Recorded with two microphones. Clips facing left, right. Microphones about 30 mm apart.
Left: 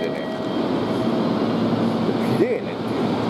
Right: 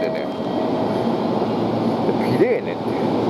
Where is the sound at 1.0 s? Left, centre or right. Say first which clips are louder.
Right 1 dB; left.